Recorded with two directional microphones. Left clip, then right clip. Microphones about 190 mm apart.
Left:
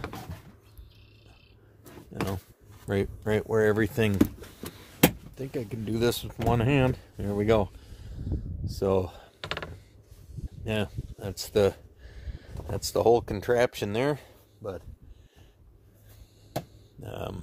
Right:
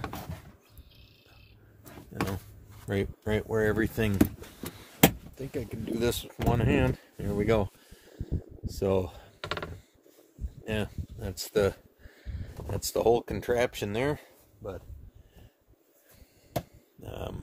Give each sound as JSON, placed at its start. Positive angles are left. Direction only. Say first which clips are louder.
{"t": 2.9, "sound": "speech", "louder": "left 3 dB", "side_deg": 30}
{"t": 5.3, "sound": "speech", "louder": "left 2 dB", "side_deg": 30}
{"t": 8.6, "sound": "computer keyboard", "louder": "left 2 dB", "side_deg": 20}
{"t": 10.6, "sound": "speech", "louder": "left 2 dB", "side_deg": 30}
{"t": 17.0, "sound": "a sound", "louder": "left 2 dB", "side_deg": 35}